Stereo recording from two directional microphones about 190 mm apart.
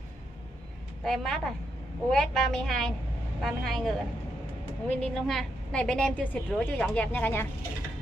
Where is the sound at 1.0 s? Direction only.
Centre (ahead or behind).